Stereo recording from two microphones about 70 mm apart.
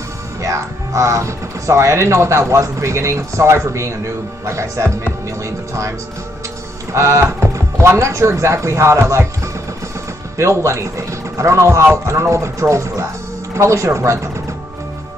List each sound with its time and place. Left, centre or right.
0.4 s speech: right